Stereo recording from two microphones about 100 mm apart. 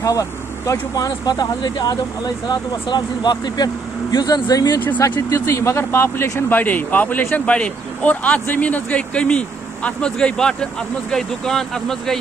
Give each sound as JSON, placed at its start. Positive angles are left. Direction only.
{"t": 0.0, "sound": "speech", "side_deg": 35}
{"t": 5.3, "sound": "speech", "side_deg": 30}
{"t": 6.5, "sound": "speech", "side_deg": 15}